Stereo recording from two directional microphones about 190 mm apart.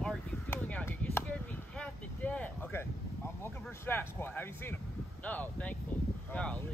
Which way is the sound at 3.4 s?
10° left (ahead or behind).